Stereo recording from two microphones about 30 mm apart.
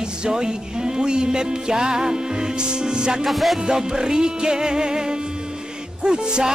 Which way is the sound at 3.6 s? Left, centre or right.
Right.